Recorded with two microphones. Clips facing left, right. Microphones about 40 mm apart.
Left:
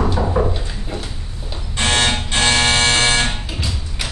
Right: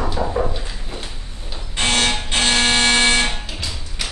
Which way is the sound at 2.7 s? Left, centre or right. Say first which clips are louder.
Even; centre.